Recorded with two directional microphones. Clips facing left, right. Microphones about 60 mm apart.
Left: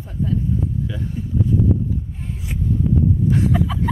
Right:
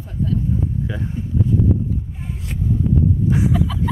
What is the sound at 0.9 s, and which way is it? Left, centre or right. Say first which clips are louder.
Speech: right 1 dB; right.